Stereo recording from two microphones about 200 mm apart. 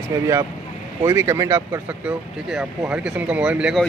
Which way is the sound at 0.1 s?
15° right (ahead or behind).